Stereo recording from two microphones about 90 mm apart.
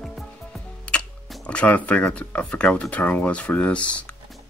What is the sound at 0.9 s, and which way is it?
Music, 10° left (ahead or behind).